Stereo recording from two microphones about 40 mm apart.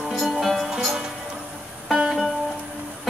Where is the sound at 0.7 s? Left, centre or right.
Centre.